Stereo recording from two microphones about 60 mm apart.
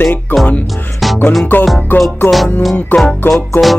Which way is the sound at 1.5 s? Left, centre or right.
Left.